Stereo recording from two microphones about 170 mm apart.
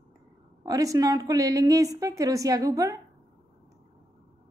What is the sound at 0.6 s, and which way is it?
A woman's voice, 20° right (ahead or behind).